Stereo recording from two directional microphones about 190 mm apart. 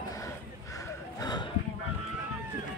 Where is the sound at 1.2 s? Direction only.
20° left (ahead or behind).